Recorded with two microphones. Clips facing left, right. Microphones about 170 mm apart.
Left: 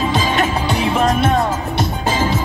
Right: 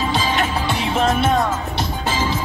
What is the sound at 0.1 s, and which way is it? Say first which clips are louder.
Music: left 3 dB; 50° left (ahead or behind).